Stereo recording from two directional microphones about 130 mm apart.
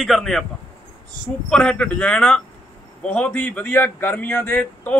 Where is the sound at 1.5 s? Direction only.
5° left (ahead or behind).